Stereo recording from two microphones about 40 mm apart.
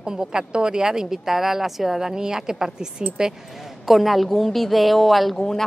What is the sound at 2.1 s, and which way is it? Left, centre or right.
Speech, centre.